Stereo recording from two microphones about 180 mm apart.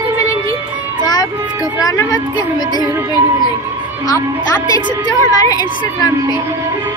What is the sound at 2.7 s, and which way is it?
Child singing, 20° right (ahead or behind).